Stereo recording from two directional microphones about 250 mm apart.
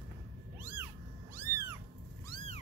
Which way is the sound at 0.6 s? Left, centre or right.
Centre.